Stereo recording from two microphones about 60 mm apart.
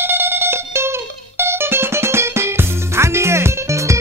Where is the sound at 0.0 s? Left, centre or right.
Right.